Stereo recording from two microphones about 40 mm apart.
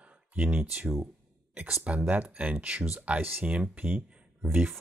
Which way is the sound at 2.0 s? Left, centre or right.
Right.